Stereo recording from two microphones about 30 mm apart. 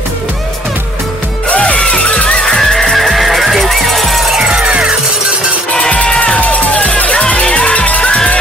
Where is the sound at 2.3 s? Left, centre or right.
Centre.